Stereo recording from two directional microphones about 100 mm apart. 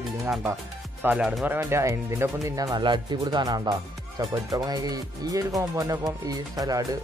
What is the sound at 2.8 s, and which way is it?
Speech, 50° right (ahead or behind).